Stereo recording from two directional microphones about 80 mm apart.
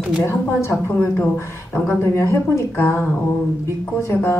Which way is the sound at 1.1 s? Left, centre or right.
Left.